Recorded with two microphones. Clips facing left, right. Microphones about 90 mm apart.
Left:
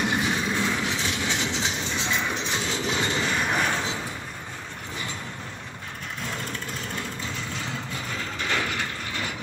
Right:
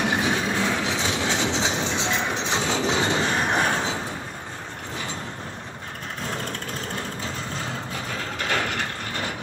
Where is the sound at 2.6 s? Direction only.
40° right (ahead or behind).